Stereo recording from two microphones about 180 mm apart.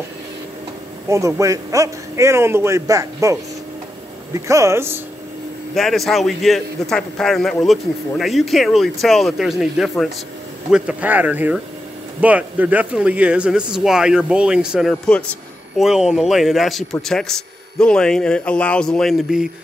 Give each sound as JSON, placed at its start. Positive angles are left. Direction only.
{"t": 1.0, "sound": "a man's voice", "side_deg": -15}
{"t": 5.8, "sound": "a man's voice", "side_deg": 0}